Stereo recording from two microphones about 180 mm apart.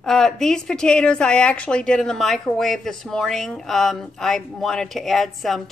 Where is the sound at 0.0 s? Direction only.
5° left (ahead or behind).